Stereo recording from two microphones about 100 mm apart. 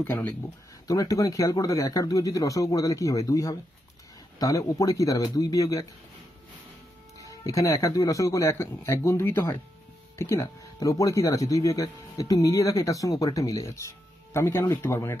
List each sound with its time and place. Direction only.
0.0 s speech: 20° left (ahead or behind)
0.8 s speech: 35° left (ahead or behind)
7.4 s speech: 30° left (ahead or behind)